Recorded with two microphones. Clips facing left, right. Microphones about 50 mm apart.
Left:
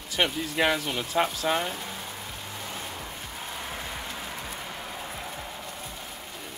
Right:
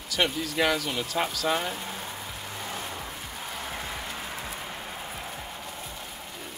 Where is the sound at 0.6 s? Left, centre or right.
Centre.